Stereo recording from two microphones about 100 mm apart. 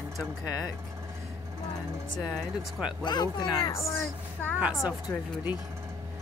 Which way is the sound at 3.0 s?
45° left (ahead or behind).